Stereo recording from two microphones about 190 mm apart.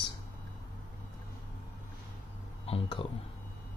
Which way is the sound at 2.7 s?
25° left (ahead or behind).